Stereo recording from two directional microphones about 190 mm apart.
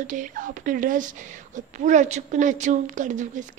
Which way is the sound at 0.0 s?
40° right (ahead or behind).